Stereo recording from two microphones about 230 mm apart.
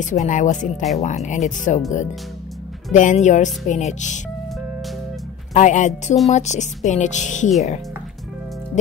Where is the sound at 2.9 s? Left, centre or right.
Left.